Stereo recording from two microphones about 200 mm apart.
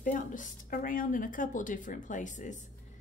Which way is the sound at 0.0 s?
40° left (ahead or behind).